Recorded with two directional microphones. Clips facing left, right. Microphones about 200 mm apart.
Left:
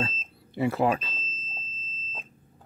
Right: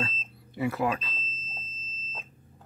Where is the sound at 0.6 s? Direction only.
30° left (ahead or behind).